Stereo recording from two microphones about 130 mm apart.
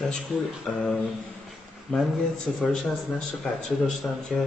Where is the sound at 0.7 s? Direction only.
5° left (ahead or behind).